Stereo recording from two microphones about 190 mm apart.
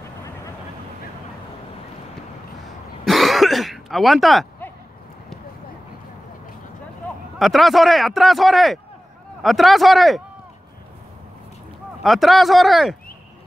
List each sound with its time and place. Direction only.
3.1 s throat clearing: centre (ahead or behind)
7.3 s speech: centre (ahead or behind)
12.0 s speech: centre (ahead or behind)